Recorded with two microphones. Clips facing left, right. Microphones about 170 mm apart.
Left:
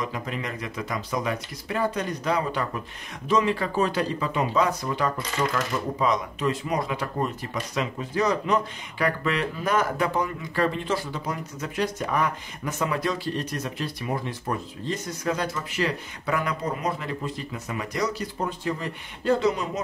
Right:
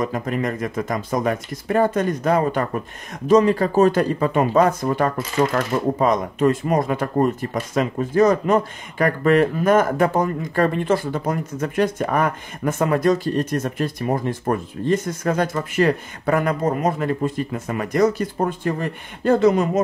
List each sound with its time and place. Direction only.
0.0 s speech: 50° right (ahead or behind)